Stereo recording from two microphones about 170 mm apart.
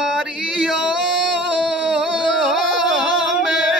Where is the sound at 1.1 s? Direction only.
90° right.